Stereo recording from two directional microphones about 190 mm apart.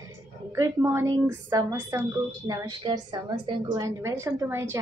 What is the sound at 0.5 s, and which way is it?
A woman's voice, 15° right (ahead or behind).